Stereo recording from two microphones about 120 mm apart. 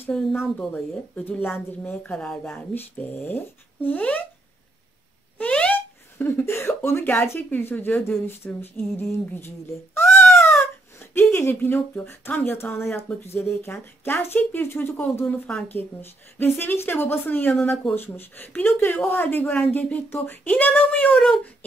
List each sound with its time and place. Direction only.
0.1 s a woman's voice: 5° left (ahead or behind)
5.4 s wail: 10° left (ahead or behind)
6.8 s speech: 20° left (ahead or behind)
10.1 s a sound: 20° left (ahead or behind)
13.5 s speech: 20° left (ahead or behind)